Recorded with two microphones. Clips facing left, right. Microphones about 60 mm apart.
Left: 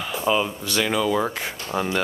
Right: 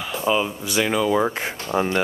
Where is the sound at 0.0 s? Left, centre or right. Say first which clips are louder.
Right 1 dB; centre.